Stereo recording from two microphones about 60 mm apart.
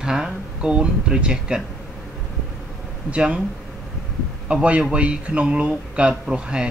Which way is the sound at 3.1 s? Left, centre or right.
Centre.